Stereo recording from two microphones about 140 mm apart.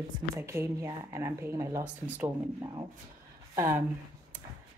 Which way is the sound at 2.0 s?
10° right (ahead or behind).